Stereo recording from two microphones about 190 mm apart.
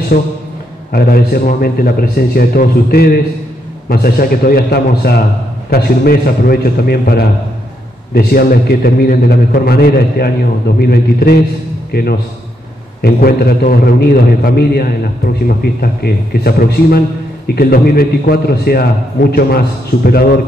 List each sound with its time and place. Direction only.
0.1 s a man's voice: 45° left (ahead or behind)